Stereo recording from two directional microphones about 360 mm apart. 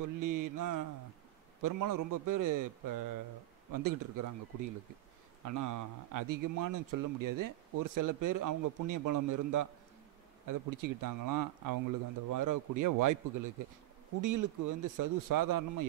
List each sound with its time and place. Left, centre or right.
0.0 s a man's voice: right